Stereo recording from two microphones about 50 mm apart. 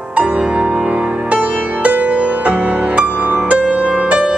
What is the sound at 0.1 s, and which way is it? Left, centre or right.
Music, right.